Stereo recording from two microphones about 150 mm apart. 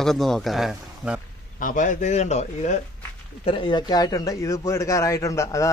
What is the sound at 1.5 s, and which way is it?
A man's voice, 60° left (ahead or behind).